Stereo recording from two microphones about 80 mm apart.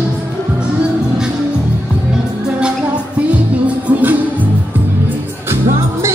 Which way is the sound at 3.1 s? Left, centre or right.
Centre.